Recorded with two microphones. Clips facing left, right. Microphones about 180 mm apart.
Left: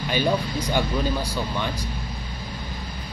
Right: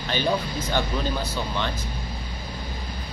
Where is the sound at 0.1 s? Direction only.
10° left (ahead or behind).